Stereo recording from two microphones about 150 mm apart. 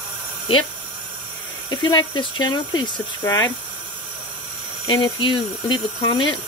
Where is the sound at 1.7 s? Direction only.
30° left (ahead or behind).